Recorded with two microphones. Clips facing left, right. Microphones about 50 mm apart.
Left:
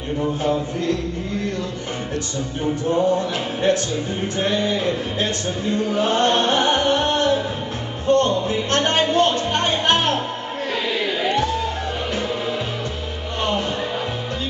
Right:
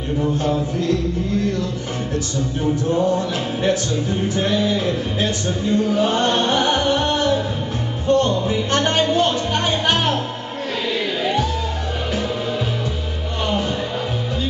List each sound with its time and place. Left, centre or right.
0.2 s speech: centre
2.6 s music: centre
8.1 s speech: centre
10.9 s a sound: centre